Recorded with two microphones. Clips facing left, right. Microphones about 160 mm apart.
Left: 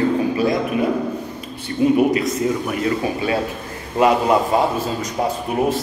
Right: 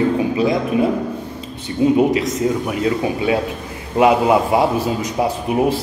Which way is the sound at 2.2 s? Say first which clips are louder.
Right 1 dB; 15° right (ahead or behind).